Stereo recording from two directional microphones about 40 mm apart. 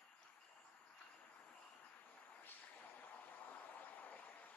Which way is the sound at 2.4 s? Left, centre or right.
Left.